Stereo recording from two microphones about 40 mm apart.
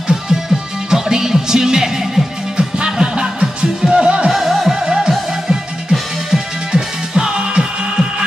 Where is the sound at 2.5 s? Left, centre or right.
Right.